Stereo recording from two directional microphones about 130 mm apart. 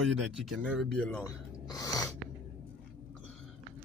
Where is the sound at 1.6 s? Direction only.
30° left (ahead or behind).